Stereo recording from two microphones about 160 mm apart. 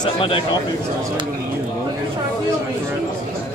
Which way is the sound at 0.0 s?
30° left (ahead or behind).